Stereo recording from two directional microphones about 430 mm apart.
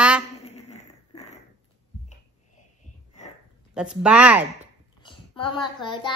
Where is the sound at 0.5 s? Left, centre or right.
Centre.